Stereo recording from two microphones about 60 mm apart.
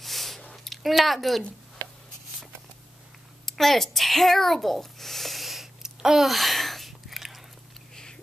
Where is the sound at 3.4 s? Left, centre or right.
Centre.